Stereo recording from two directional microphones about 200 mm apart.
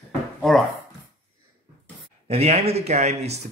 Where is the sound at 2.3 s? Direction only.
30° right (ahead or behind).